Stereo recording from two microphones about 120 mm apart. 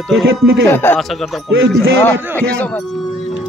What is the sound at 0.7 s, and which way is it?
Speech, 20° left (ahead or behind).